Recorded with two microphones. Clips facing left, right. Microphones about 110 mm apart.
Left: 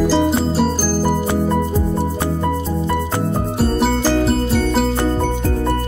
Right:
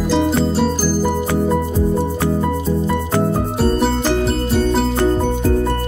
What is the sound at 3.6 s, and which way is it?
Music, centre (ahead or behind).